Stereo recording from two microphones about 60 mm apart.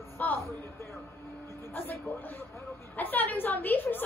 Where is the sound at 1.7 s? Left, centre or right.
Left.